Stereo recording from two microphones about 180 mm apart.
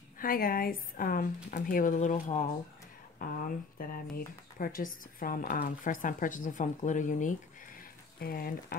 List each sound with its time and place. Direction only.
0.2 s speech: 55° left (ahead or behind)
8.2 s speech: 55° left (ahead or behind)